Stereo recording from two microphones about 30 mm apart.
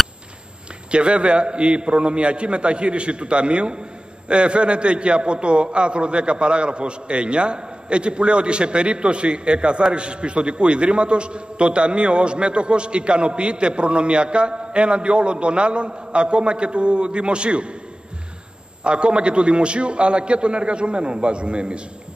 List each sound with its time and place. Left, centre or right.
0.9 s a man's voice: right
18.9 s a man's voice: right